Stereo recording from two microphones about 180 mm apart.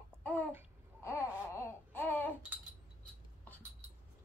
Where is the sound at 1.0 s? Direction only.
15° left (ahead or behind).